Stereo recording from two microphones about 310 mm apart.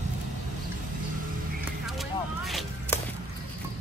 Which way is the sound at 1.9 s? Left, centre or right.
Centre.